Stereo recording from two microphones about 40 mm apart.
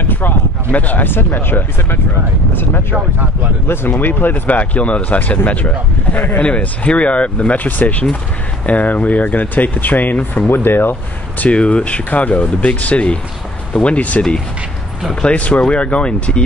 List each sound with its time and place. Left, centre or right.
0.1 s speech: left
1.0 s speech: left
3.6 s speech: left
4.0 s speech: left
4.3 s speech: left
6.6 s speech: left
10.5 s speech: left
11.4 s speech: left
15.2 s speech: left